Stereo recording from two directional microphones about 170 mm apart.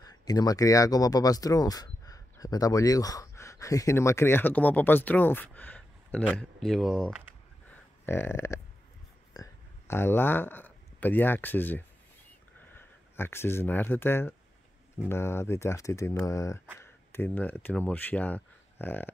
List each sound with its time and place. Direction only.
0.0 s speech: 20° left (ahead or behind); by 7.3 s 5° right (ahead or behind)
7.7 s a sound: 15° left (ahead or behind)
9.3 s speech: 20° left (ahead or behind)